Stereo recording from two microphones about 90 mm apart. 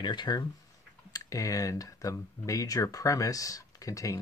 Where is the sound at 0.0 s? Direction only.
55° left (ahead or behind).